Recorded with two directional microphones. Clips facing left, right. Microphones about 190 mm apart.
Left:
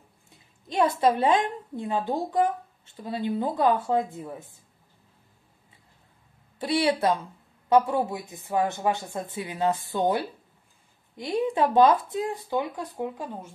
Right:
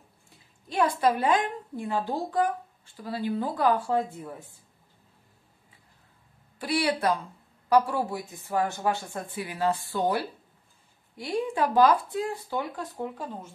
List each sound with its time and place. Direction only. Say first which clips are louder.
0.7 s a woman's voice: left 2 dB; 25° left (ahead or behind)
6.6 s a woman's voice: left 3 dB; 25° left (ahead or behind)